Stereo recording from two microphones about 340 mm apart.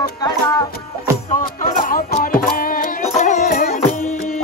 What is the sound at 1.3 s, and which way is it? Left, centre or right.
Music, left.